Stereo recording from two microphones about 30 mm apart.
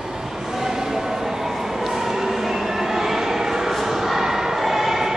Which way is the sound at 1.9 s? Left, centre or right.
Centre.